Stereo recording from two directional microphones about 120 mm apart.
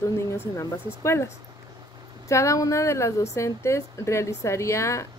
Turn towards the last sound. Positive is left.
turn(degrees=25)  # may be behind; listen again after turning